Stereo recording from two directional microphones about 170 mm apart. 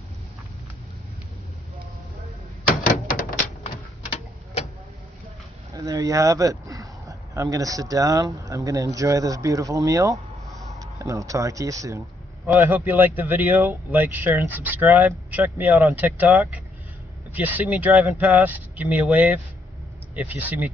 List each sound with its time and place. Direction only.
2.7 s door: 55° left (ahead or behind)
5.9 s speech: 20° right (ahead or behind)